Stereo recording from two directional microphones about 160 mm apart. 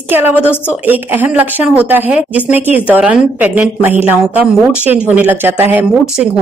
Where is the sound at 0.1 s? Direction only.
10° right (ahead or behind).